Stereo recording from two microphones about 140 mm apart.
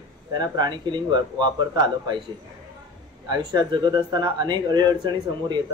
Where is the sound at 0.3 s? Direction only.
30° right (ahead or behind).